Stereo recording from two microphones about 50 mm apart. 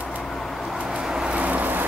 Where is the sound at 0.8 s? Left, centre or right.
Centre; by 1.9 s right.